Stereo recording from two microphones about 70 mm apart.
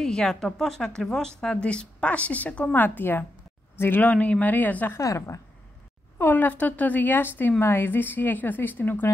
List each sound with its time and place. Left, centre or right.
0.0 s a woman's voice: centre; by 4.0 s left
4.0 s a woman's voice: centre
4.9 s a woman's voice: left
6.1 s a woman's voice: left